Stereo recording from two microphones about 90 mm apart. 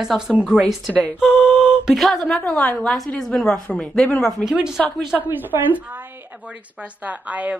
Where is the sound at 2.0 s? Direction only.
Centre (ahead or behind).